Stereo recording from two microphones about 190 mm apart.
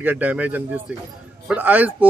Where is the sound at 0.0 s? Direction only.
10° right (ahead or behind).